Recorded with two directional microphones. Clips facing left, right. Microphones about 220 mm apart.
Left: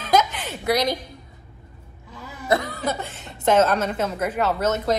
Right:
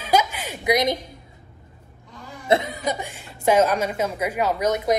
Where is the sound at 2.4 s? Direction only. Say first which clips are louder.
Right 1 dB; 25° right (ahead or behind).